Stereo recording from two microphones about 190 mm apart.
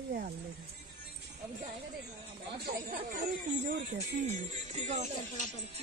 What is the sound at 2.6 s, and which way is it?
Speech, 50° right (ahead or behind).